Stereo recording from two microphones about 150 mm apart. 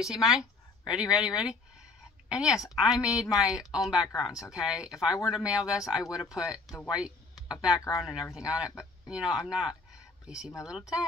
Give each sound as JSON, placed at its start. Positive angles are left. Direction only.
{"t": 0.0, "sound": "a woman's voice", "side_deg": -5}